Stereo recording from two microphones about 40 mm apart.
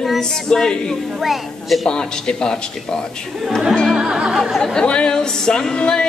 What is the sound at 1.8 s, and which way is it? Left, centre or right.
Speech, centre.